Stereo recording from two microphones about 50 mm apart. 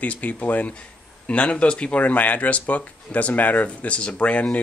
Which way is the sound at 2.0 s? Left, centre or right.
Left.